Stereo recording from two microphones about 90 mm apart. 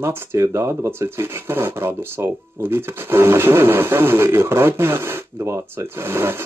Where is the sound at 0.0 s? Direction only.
25° right (ahead or behind).